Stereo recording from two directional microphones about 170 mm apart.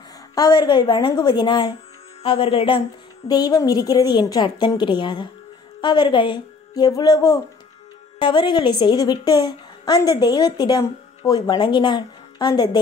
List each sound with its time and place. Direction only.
0.3 s a woman's voice: 25° left (ahead or behind)